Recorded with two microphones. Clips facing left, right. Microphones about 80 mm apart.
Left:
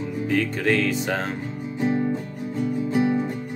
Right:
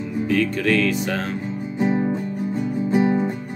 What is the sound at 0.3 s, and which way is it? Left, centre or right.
Music, left.